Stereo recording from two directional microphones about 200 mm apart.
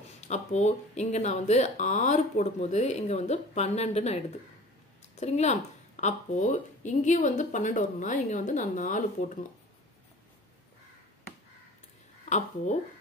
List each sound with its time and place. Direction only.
0.3 s a woman's voice: 35° left (ahead or behind)
12.3 s a woman's voice: 35° left (ahead or behind)